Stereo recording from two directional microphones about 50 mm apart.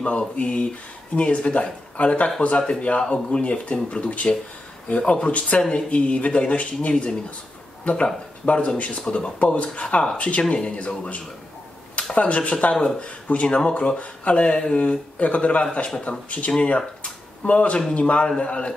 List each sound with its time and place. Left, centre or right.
0.0 s speech: left